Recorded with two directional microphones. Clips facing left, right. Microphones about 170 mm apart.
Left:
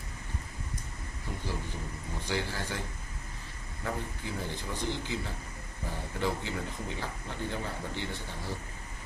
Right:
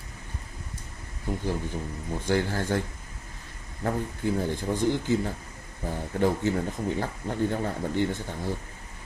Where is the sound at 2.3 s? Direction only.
50° right (ahead or behind).